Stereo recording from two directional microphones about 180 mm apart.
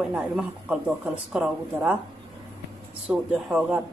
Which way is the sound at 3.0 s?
5° right (ahead or behind).